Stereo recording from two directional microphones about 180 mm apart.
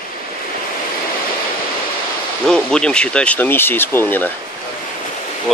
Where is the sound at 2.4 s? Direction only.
5° left (ahead or behind).